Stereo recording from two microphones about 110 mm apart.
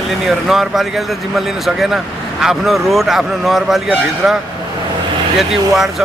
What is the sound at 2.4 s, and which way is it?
Speech, centre (ahead or behind).